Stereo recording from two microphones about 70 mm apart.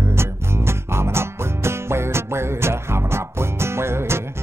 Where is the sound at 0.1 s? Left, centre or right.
Right.